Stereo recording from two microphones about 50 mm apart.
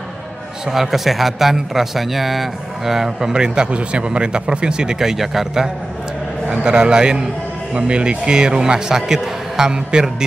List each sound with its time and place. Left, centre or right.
0.7 s speech: centre